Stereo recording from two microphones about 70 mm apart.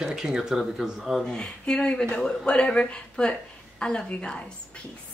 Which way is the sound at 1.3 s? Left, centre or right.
Centre.